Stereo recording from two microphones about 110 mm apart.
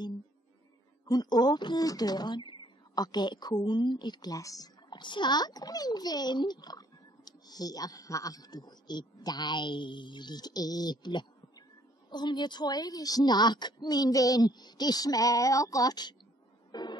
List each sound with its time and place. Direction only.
1.0 s a woman's voice: 40° left (ahead or behind)